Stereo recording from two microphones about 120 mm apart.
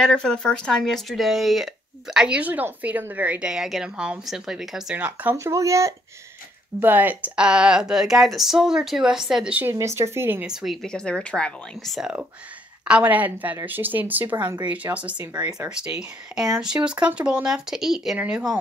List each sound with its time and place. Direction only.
0.0 s a woman's voice: 5° left (ahead or behind)
4.9 s a woman's voice: 15° right (ahead or behind)
6.8 s a woman's voice: 15° right (ahead or behind)
10.4 s speech: 5° right (ahead or behind)
12.8 s a woman's voice: 10° right (ahead or behind)